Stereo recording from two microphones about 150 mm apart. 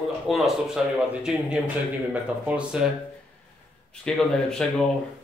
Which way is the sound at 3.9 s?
5° left (ahead or behind).